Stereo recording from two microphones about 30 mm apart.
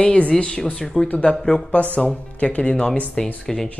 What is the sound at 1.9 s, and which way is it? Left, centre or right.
Speech, left.